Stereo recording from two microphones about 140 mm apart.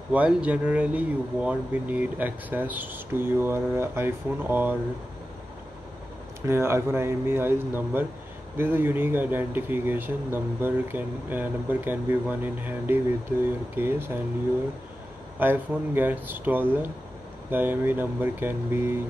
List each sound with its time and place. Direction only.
0.1 s speech: 10° right (ahead or behind)
6.4 s speech: 20° right (ahead or behind)
15.3 s speech: 15° right (ahead or behind)